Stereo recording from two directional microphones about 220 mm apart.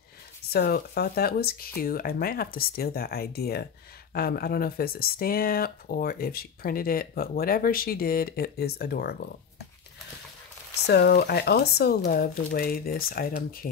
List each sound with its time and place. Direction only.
0.5 s speech: 45° left (ahead or behind)
10.9 s speech: 45° left (ahead or behind)